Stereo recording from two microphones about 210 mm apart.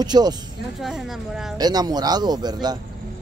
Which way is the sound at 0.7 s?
Centre (ahead or behind).